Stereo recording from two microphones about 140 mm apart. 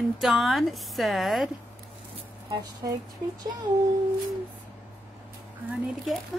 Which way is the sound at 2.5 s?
25° right (ahead or behind).